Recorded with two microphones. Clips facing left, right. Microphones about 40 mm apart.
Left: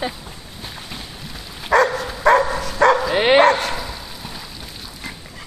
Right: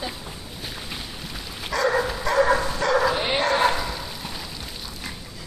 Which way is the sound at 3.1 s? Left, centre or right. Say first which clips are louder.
Left 10 dB; left.